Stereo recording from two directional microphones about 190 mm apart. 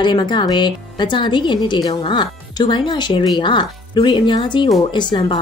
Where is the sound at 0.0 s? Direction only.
25° left (ahead or behind).